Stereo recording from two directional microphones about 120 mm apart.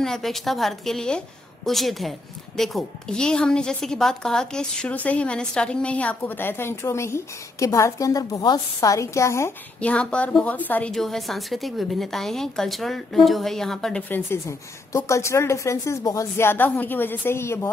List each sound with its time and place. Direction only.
0.0 s a woman's voice: 5° left (ahead or behind); by 9.5 s 25° left (ahead or behind)
9.8 s a woman's voice: 10° left (ahead or behind)
14.0 s a woman's voice: 15° left (ahead or behind)